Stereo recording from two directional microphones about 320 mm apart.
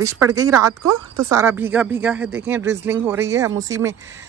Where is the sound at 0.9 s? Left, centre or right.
Right.